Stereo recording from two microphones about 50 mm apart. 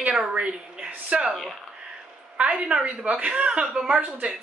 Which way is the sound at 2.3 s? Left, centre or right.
Right.